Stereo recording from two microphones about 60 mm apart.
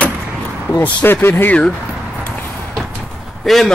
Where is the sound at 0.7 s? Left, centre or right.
Left.